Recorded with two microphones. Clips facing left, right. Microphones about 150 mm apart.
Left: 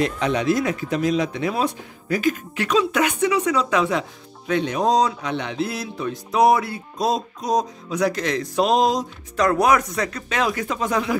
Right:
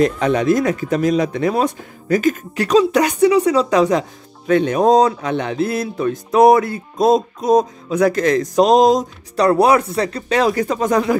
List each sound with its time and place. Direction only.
0.0 s speech: 45° right (ahead or behind)
4.5 s speech: 50° right (ahead or behind)